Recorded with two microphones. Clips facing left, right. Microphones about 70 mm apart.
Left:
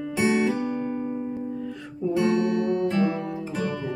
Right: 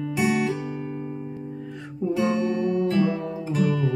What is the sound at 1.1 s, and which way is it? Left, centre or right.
Music, centre.